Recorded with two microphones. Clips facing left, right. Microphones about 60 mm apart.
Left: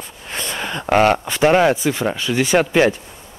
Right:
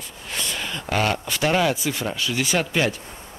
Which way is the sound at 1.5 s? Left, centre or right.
Left.